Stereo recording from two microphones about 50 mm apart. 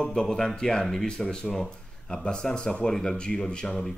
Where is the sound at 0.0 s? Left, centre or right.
Centre.